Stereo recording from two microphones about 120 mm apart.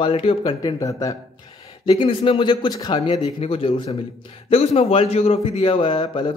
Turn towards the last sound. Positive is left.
turn(degrees=45)  # may be behind; listen again after turning